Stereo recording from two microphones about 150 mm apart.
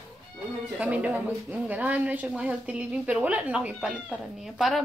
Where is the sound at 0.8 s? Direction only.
10° right (ahead or behind).